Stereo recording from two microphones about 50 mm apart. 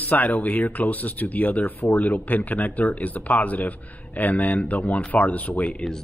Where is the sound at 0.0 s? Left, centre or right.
Left.